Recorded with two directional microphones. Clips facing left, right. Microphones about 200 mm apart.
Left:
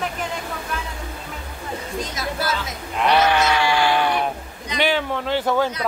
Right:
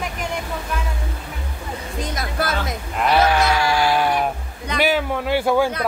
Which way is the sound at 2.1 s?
55° right (ahead or behind).